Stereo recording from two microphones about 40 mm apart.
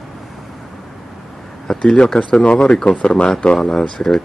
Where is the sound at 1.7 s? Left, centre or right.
Centre.